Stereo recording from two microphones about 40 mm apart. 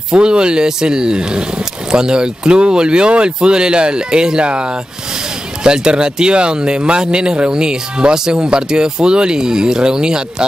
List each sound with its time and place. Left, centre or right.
0.1 s speech: right